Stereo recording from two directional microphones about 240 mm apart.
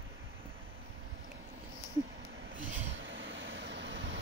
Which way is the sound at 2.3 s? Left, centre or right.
Right.